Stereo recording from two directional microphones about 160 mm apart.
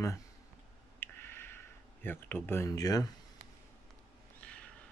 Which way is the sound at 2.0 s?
15° left (ahead or behind).